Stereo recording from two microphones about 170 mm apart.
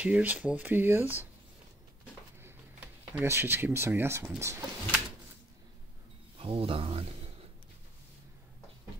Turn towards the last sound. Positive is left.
turn(degrees=-35)  # may be behind; listen again after turning